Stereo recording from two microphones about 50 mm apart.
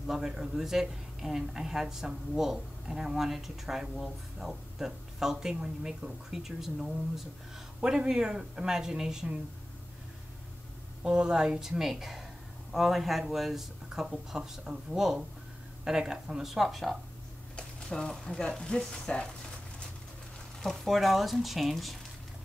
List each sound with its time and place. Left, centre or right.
0.0 s speech: centre
11.1 s speech: centre
16.5 s speech: centre
20.6 s speech: centre